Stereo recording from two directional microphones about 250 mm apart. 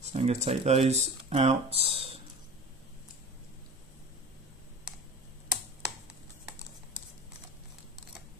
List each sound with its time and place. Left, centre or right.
0.0 s speech: right